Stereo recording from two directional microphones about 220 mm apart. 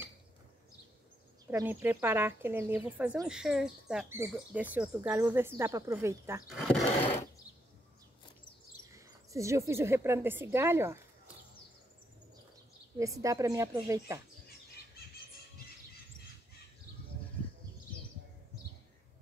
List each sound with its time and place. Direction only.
1.5 s speech: 10° right (ahead or behind)
6.4 s speech: centre (ahead or behind)
7.0 s a sound: 30° left (ahead or behind)
8.9 s a woman's voice: 15° right (ahead or behind)
12.9 s speech: 15° right (ahead or behind)